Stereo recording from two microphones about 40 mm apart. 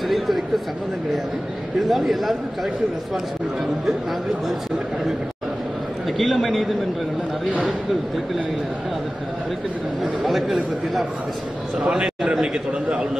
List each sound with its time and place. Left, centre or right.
1.8 s a man's voice: centre
6.1 s a man's voice: centre
10.2 s a man's voice: centre
11.8 s a man's voice: centre